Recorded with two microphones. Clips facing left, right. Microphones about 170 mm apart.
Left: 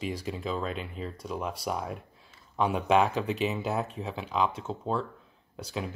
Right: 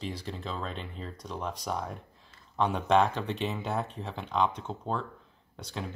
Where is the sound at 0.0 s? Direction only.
10° left (ahead or behind).